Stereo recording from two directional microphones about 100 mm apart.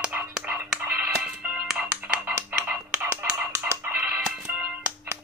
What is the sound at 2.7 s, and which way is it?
Music, 15° right (ahead or behind).